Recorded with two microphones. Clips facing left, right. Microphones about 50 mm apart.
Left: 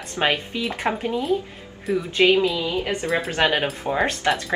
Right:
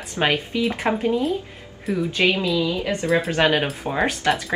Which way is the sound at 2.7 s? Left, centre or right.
Left.